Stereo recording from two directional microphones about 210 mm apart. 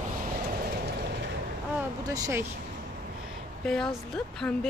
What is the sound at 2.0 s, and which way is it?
Speech, 15° right (ahead or behind).